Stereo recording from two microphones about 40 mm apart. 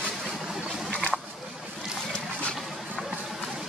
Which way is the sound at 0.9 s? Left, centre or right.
Left.